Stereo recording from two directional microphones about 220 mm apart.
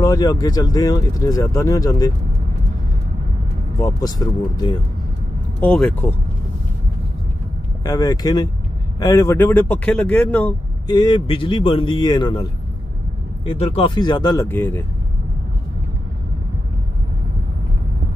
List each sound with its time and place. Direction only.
0.0 s speech: 15° left (ahead or behind)
3.7 s speech: 15° left (ahead or behind)
5.6 s speech: 5° left (ahead or behind)
7.8 s speech: 15° left (ahead or behind)
10.9 s a man's voice: 20° left (ahead or behind)
13.5 s a man's voice: 25° left (ahead or behind); by 14.9 s 10° left (ahead or behind)